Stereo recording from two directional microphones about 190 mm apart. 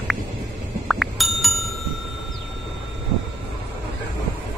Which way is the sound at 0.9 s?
Centre (ahead or behind).